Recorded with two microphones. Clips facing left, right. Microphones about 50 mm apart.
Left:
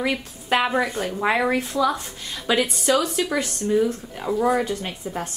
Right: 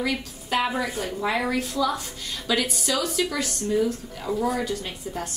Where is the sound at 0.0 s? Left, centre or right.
Left.